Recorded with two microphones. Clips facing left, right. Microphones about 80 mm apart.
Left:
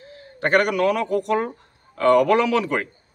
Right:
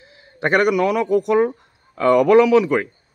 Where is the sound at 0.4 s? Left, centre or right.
Right.